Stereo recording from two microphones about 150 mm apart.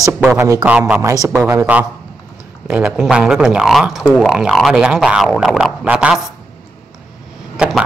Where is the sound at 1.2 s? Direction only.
10° right (ahead or behind).